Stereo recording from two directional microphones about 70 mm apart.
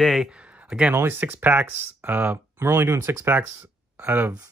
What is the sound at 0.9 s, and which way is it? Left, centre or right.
Speech, right.